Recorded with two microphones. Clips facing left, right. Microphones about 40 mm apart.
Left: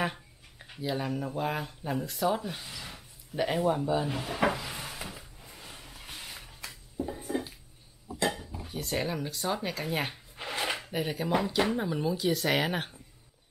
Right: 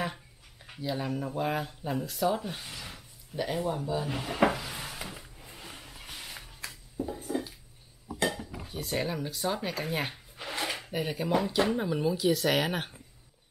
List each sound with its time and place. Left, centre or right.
0.7 s speech: centre
3.3 s speech: centre
4.1 s speech: centre
4.7 s a sound: centre
6.6 s a sound: centre
8.6 s speech: centre
10.3 s dishes: centre
10.8 s speech: centre